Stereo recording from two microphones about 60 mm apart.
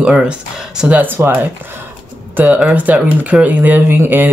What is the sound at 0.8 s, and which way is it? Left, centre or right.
Speech, centre.